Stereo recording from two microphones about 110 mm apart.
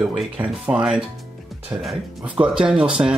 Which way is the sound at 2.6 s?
10° right (ahead or behind).